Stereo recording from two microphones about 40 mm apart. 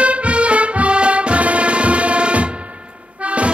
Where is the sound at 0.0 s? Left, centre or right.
Right.